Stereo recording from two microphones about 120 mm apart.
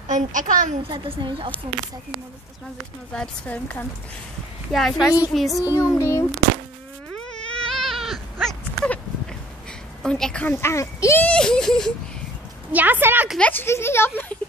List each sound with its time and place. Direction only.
0.1 s a woman's voice: 90° right
0.8 s a woman's voice: 40° right (ahead or behind)
3.1 s speech: 10° left (ahead or behind)
4.7 s a sound: centre (ahead or behind)
5.8 s a child's voice: 25° left (ahead or behind)
7.2 s cat: 5° left (ahead or behind)
10.0 s speech: 5° left (ahead or behind)
10.5 s a child's voice: 25° left (ahead or behind)
11.2 s a sound: 5° left (ahead or behind)
12.7 s a woman's voice: 15° right (ahead or behind)
13.4 s speech: 15° left (ahead or behind)